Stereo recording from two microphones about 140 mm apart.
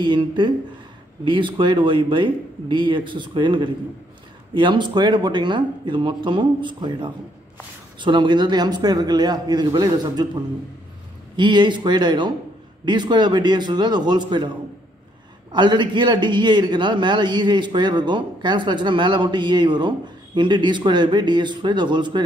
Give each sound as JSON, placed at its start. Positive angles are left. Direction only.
{"t": 0.0, "sound": "a man's voice", "side_deg": -35}
{"t": 15.5, "sound": "a man's voice", "side_deg": -35}